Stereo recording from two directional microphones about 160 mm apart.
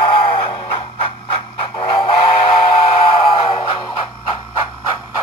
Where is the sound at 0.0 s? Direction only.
35° left (ahead or behind).